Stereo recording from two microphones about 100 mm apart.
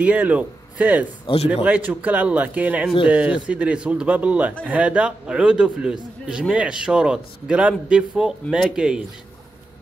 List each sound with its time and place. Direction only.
0.0 s a man's voice: 15° right (ahead or behind)